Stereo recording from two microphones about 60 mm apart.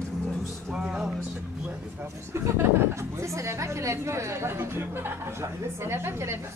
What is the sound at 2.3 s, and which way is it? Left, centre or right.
A woman's voice, right.